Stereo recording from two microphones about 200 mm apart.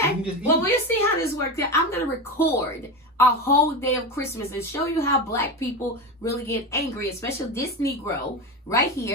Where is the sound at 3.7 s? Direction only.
15° left (ahead or behind).